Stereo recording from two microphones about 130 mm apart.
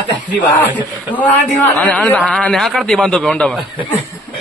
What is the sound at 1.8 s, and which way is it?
A man's voice, 10° left (ahead or behind).